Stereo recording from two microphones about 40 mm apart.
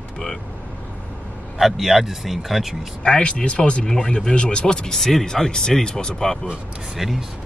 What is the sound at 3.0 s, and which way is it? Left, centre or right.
Speech, left.